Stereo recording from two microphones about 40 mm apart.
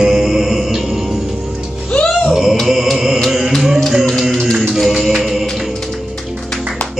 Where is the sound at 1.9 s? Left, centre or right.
Centre.